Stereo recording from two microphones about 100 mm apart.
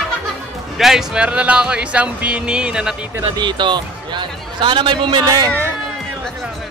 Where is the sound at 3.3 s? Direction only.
50° right (ahead or behind).